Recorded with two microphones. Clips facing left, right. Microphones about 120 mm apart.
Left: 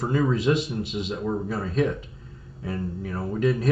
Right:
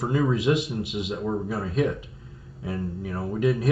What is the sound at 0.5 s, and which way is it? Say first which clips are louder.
Speech: even; 5° right (ahead or behind).